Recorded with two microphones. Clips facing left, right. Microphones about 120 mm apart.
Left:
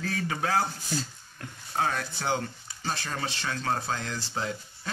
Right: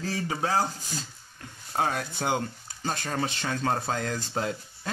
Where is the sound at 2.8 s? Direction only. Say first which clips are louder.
Right 3 dB; 50° right (ahead or behind).